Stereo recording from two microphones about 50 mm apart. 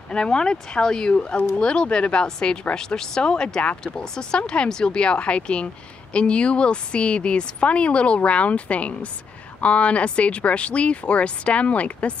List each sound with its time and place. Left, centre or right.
0.1 s a woman's voice: centre